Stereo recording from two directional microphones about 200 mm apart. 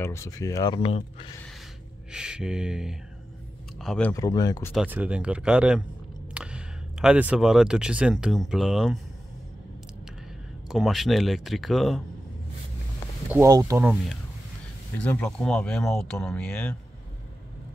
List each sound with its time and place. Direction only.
0.0 s speech: 15° left (ahead or behind)
0.8 s speech: 30° left (ahead or behind)
2.1 s speech: 5° right (ahead or behind)
4.1 s speech: 15° left (ahead or behind)
4.7 s speech: 10° right (ahead or behind)
10.7 s speech: centre (ahead or behind)
13.3 s speech: 15° right (ahead or behind)
15.0 s speech: 5° left (ahead or behind)